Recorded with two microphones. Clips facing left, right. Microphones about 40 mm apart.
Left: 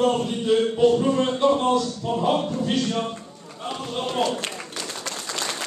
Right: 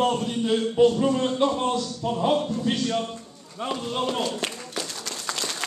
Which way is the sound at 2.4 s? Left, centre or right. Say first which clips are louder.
Left 1 dB; left.